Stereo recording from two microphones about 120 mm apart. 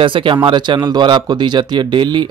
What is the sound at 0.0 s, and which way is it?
Speech, 45° right (ahead or behind).